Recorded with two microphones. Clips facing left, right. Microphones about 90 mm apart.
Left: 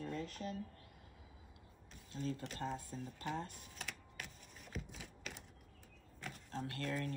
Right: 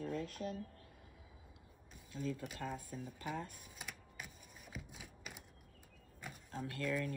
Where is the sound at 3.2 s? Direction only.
10° right (ahead or behind).